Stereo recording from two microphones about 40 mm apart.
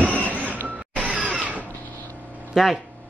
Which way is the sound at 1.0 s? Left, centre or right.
Right.